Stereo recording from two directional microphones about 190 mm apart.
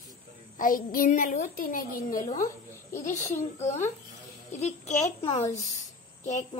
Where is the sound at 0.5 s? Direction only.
45° left (ahead or behind).